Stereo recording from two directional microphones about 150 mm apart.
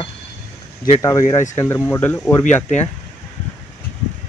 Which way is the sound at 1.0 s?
25° left (ahead or behind).